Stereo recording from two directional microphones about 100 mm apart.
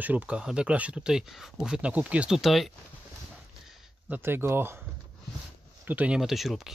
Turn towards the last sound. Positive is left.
turn(degrees=0)  # may be behind; listen again after turning